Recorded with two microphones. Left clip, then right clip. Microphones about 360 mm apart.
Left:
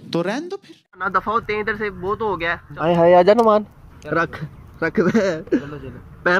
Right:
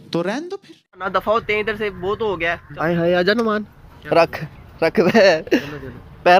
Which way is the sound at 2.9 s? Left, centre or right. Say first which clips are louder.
Left 5 dB; centre.